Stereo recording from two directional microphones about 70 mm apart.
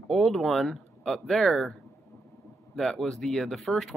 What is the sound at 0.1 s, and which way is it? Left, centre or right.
Speech, centre.